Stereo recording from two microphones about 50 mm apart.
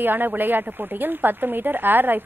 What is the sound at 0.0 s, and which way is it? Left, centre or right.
Speech, right.